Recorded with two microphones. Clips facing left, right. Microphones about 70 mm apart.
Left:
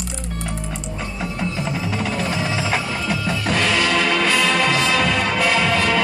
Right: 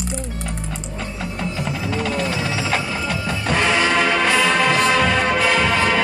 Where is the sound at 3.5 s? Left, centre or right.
Centre.